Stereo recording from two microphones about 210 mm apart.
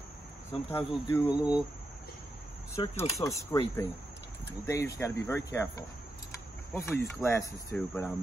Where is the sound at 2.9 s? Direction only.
30° left (ahead or behind).